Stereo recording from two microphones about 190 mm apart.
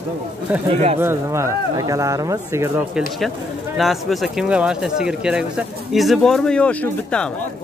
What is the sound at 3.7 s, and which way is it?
Speech, centre (ahead or behind).